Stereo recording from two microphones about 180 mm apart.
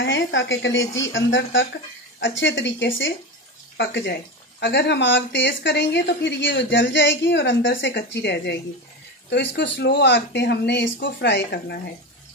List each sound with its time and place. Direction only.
0.0 s speech: 90° left
3.7 s speech: 70° left (ahead or behind)